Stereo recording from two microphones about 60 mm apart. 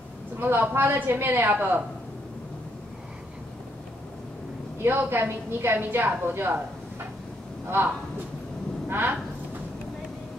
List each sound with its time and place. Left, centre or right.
0.4 s a woman's voice: right
4.8 s a woman's voice: right
8.8 s speech: right